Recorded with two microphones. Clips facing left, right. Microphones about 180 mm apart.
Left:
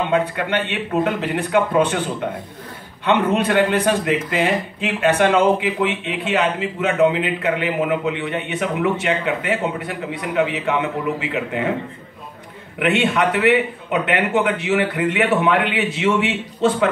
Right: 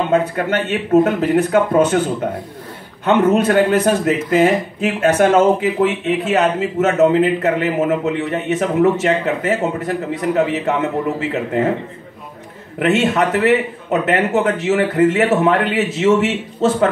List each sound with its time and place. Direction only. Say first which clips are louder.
0.1 s speech: right 3 dB; 45° right (ahead or behind)
3.1 s a man's voice: right 4 dB; 45° right (ahead or behind)
12.7 s a man's voice: right 3 dB; 40° right (ahead or behind)